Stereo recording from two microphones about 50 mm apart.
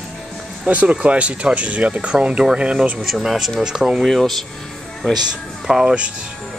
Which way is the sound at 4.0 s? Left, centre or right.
Centre.